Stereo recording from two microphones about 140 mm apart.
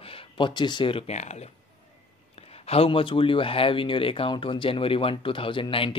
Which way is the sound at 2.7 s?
40° left (ahead or behind).